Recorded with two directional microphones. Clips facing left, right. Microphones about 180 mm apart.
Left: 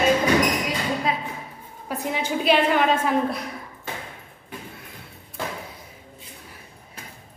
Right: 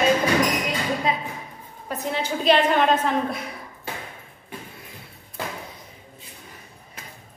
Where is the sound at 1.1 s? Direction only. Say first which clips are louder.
Right 1 dB; centre (ahead or behind).